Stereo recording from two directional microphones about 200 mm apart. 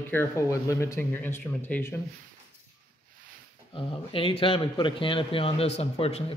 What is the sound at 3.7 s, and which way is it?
A man's voice, 25° left (ahead or behind).